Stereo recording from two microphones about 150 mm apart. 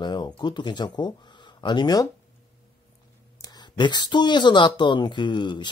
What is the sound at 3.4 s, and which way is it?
Speech, 30° left (ahead or behind).